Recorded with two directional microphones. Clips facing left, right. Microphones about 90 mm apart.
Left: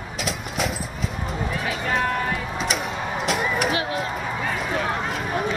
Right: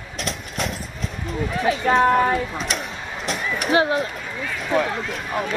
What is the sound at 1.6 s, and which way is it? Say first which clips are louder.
Run: right 9 dB; 35° right (ahead or behind).